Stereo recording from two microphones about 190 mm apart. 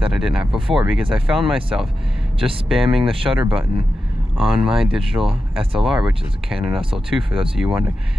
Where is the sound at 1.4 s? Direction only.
30° right (ahead or behind).